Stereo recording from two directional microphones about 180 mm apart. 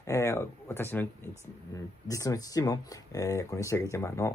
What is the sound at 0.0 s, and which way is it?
Speech, 15° left (ahead or behind).